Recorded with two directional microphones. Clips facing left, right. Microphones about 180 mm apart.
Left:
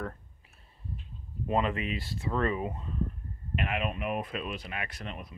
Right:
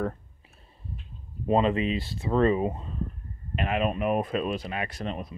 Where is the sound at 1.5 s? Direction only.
25° right (ahead or behind).